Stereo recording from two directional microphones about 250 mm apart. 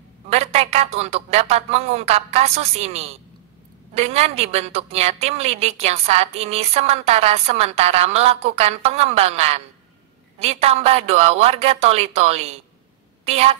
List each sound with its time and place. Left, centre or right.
0.3 s a woman's voice: right